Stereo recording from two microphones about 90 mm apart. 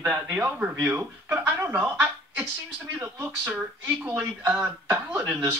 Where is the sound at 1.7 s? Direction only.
15° right (ahead or behind).